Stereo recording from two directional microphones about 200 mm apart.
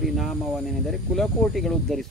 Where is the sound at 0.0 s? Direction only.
Centre (ahead or behind).